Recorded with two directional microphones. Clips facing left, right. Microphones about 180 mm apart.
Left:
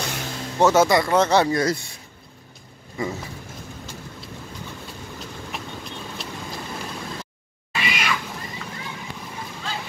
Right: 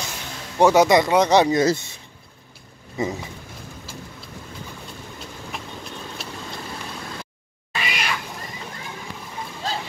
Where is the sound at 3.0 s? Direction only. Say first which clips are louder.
Right 2 dB; 20° right (ahead or behind).